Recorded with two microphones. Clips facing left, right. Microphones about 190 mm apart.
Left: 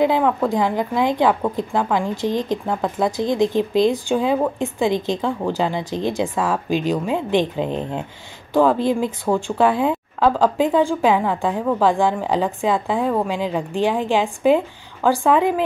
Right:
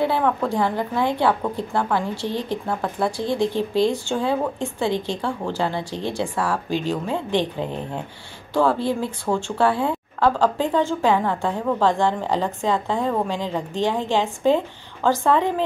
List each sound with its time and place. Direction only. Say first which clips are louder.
0.0 s speech: left 3 dB; 15° left (ahead or behind)